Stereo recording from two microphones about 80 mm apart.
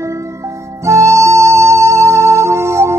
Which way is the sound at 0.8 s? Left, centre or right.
Right.